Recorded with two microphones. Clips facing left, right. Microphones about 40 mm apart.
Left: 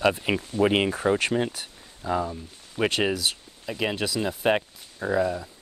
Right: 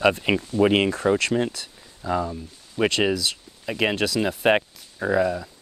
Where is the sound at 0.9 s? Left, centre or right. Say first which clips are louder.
Right 2 dB; centre.